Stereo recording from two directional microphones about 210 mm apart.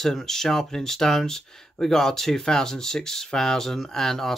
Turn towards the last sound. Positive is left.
turn(degrees=0)  # may be behind; listen again after turning